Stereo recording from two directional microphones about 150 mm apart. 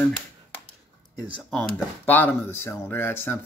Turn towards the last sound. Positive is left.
turn(degrees=15)  # may be behind; listen again after turning